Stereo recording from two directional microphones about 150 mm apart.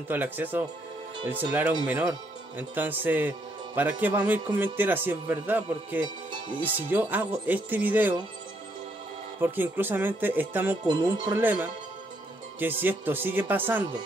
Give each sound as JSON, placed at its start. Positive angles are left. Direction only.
{"t": 0.1, "sound": "speech", "side_deg": -10}
{"t": 1.9, "sound": "a man's voice", "side_deg": -10}
{"t": 9.4, "sound": "speech", "side_deg": -15}
{"t": 10.9, "sound": "speech", "side_deg": -30}
{"t": 11.3, "sound": "speech", "side_deg": -10}